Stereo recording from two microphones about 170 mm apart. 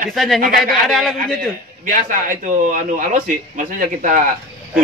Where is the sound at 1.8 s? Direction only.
50° right (ahead or behind).